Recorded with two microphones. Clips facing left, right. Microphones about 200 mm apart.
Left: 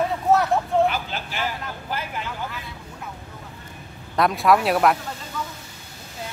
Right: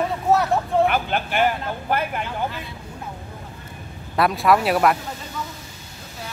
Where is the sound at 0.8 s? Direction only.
60° right (ahead or behind).